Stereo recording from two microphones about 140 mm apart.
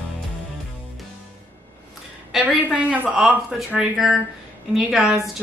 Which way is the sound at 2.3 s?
10° right (ahead or behind).